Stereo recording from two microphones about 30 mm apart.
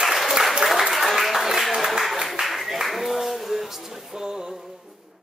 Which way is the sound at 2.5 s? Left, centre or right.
Centre.